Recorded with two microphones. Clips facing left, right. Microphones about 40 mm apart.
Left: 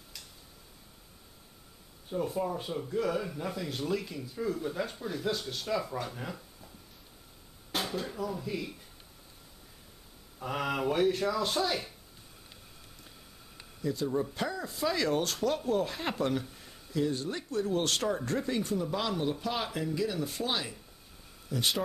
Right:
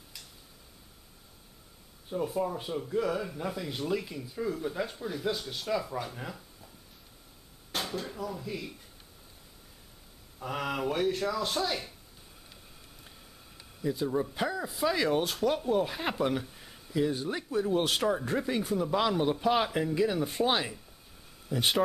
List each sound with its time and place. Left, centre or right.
2.0 s speech: centre
7.7 s speech: centre
10.4 s speech: centre
13.7 s speech: centre
19.4 s chopping: right
21.5 s speech: right